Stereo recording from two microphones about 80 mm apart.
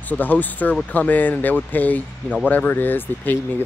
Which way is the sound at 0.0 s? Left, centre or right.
Left.